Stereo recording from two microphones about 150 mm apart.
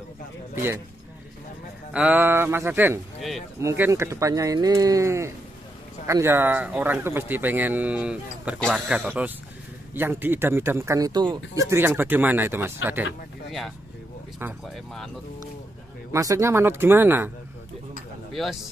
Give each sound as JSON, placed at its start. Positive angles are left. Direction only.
{"t": 1.9, "sound": "speech", "side_deg": -5}
{"t": 3.2, "sound": "speech", "side_deg": 0}
{"t": 3.6, "sound": "speech", "side_deg": -15}
{"t": 8.5, "sound": "speech", "side_deg": 5}
{"t": 8.8, "sound": "speech", "side_deg": -10}
{"t": 11.7, "sound": "speech", "side_deg": -15}
{"t": 13.5, "sound": "speech", "side_deg": 0}
{"t": 14.4, "sound": "speech", "side_deg": -15}
{"t": 16.1, "sound": "speech", "side_deg": -20}
{"t": 18.3, "sound": "speech", "side_deg": 0}